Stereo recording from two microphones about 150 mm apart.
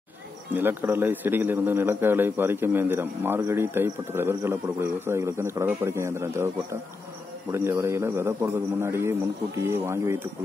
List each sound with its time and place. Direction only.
0.6 s a man's voice: 15° right (ahead or behind)